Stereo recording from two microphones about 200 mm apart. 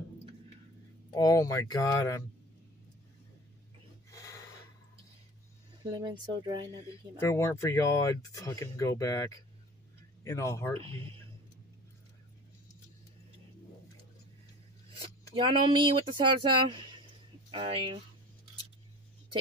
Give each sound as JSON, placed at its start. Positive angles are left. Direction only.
{"t": 1.1, "sound": "speech", "side_deg": 20}
{"t": 5.8, "sound": "speech", "side_deg": -20}
{"t": 6.9, "sound": "speech", "side_deg": 15}
{"t": 15.0, "sound": "speech", "side_deg": -25}